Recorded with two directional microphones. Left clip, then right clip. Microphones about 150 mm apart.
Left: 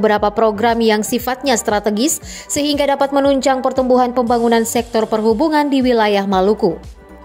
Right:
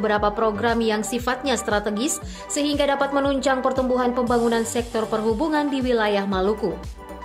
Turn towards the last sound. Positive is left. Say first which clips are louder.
# left 8 dB
turn(degrees=45)  # may be behind; listen again after turning